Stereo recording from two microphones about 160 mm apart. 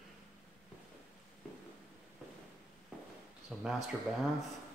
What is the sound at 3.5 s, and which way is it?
Speech, 5° right (ahead or behind).